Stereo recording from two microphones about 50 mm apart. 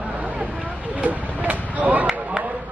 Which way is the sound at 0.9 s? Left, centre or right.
Right.